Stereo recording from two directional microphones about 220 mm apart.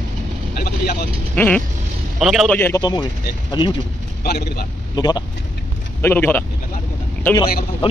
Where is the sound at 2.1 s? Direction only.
Centre (ahead or behind); by 3.7 s 20° left (ahead or behind).